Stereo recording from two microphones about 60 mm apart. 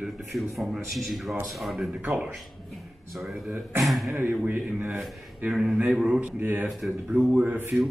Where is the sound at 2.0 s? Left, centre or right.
Right.